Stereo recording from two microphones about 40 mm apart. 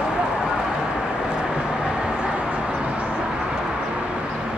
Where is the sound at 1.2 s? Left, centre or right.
Right.